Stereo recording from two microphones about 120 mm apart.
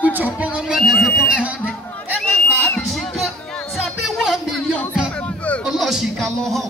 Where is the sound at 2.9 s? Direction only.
Centre (ahead or behind).